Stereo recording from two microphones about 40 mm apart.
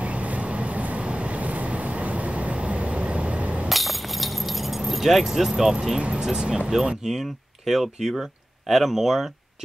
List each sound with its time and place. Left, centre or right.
0.0 s vehicle: right
3.6 s keys jangling: centre
5.9 s speech: right
7.0 s speech: centre